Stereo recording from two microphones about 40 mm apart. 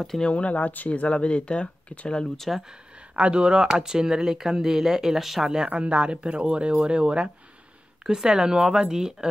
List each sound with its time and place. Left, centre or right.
0.2 s speech: left
2.2 s speech: centre
3.2 s speech: right; by 5.5 s centre
5.7 s speech: right